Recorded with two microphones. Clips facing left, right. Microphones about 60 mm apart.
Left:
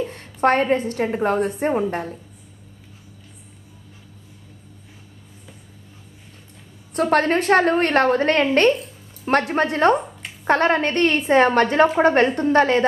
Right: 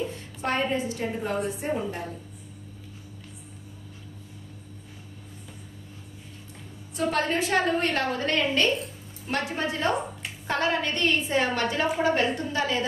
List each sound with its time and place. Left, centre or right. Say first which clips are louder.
0.1 s a woman's voice: left 10 dB; left
7.0 s a woman's voice: left 8 dB; left